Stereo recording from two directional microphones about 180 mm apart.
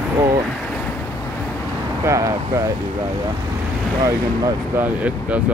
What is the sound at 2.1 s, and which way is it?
Speech, 15° right (ahead or behind).